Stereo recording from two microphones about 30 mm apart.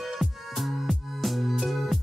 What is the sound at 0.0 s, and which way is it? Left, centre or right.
Music, centre.